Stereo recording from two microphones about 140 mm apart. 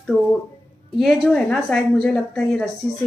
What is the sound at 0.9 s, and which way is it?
Speech, centre (ahead or behind).